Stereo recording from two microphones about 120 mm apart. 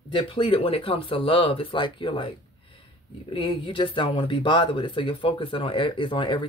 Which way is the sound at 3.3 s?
45° left (ahead or behind).